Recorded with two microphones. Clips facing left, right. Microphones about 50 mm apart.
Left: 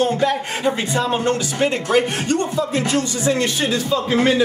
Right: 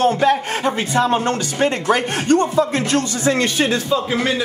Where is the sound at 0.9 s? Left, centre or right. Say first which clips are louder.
Right 3 dB; right.